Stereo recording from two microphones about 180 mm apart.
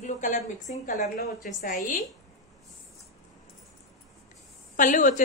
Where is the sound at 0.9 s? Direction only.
55° left (ahead or behind).